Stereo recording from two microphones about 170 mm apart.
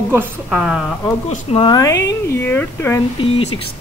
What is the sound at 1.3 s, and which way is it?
Speech, 35° left (ahead or behind).